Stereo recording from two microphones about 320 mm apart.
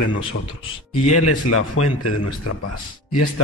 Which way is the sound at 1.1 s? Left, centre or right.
Left.